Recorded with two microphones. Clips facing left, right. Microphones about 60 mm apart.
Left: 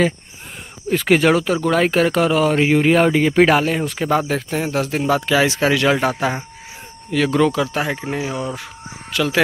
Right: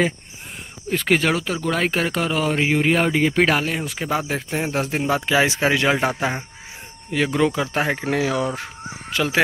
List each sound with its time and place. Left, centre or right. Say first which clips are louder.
0.8 s speech: left 5 dB; centre
4.3 s speech: left 3 dB; centre
7.5 s speech: left 2 dB; right
7.8 s speech: even; right
8.1 s speech: right 3 dB; right
9.1 s speech: left 2 dB; right